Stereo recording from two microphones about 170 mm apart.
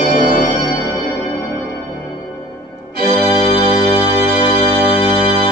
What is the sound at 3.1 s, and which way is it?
Music, 35° left (ahead or behind).